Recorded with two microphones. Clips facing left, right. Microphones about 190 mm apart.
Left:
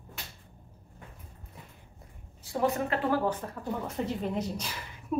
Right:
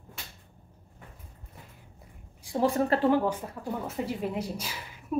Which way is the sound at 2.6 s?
30° right (ahead or behind).